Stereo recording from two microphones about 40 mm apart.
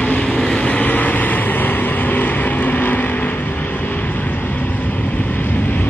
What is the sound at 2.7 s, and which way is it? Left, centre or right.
Vehicle, left.